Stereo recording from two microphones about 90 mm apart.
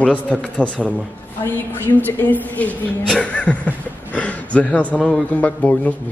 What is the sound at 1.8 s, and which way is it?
A woman's voice, 20° left (ahead or behind).